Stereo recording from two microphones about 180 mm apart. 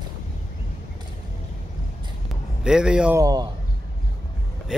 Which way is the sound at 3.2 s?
20° right (ahead or behind).